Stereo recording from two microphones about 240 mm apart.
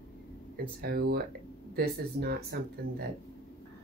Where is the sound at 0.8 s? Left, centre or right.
Right.